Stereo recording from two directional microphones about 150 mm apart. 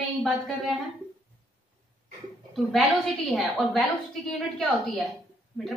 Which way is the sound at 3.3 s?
Centre (ahead or behind).